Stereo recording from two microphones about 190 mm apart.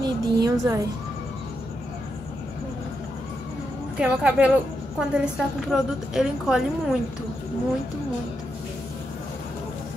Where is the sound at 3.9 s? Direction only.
5° right (ahead or behind).